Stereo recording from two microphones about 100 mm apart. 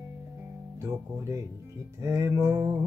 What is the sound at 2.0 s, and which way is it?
Music, 30° right (ahead or behind).